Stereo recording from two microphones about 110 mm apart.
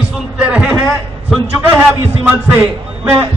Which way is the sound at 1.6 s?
25° right (ahead or behind).